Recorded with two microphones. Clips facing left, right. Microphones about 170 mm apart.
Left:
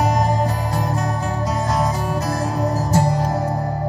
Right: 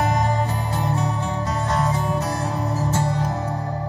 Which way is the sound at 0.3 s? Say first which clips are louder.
Left 3 dB; 35° left (ahead or behind).